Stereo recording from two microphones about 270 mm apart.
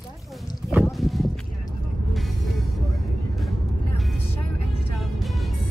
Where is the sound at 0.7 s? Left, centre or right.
Centre.